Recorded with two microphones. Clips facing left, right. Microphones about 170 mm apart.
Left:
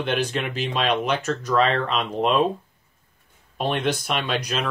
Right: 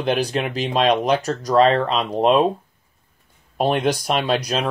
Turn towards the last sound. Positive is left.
turn(degrees=-35)  # may be behind; listen again after turning